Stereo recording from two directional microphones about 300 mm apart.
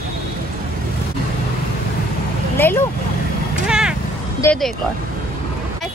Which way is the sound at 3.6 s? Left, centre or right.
Centre.